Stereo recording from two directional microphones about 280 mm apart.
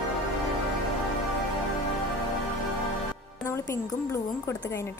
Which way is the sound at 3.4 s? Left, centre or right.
Centre.